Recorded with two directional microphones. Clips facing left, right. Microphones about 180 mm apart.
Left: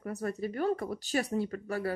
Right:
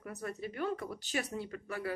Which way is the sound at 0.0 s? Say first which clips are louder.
Left 6 dB; 40° left (ahead or behind).